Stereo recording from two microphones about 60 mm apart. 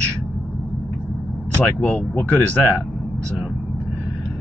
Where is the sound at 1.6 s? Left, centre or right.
Left.